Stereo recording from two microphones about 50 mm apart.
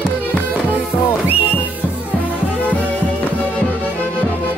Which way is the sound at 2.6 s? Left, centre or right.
Left.